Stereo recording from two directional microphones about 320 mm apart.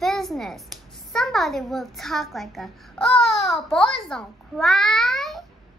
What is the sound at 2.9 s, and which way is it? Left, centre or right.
Babbling, centre.